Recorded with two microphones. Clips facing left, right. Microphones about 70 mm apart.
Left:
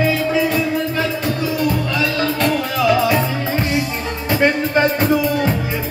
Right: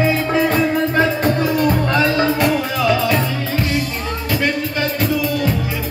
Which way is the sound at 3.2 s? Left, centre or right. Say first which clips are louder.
Left 1 dB; left.